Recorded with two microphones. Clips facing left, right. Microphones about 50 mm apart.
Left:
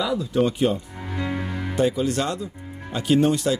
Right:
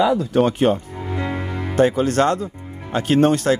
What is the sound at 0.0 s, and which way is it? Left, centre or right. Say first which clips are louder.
Speech: right 5 dB; right.